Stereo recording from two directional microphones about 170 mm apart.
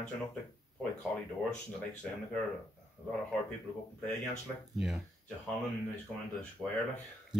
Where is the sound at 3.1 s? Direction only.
5° left (ahead or behind).